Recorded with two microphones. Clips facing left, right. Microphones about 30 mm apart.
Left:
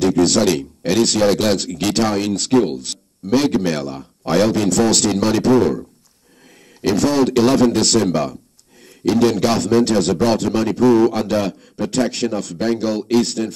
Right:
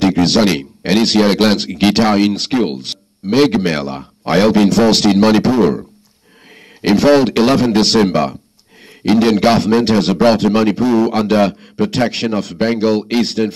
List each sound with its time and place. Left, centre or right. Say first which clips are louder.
0.0 s speech: right 2 dB; right